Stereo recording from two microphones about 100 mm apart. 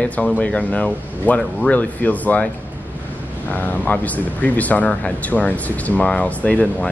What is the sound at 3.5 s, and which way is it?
Speech, 15° left (ahead or behind).